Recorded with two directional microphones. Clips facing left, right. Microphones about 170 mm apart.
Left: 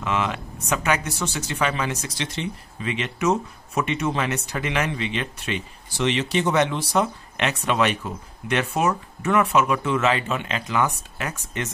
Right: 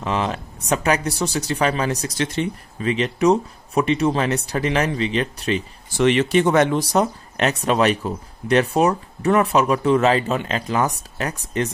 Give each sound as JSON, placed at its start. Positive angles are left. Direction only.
{"t": 0.0, "sound": "speech", "side_deg": -35}
{"t": 2.8, "sound": "speech", "side_deg": -35}
{"t": 5.9, "sound": "speech", "side_deg": -55}